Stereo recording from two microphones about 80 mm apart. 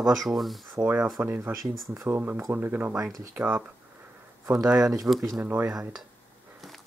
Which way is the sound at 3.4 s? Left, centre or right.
Centre.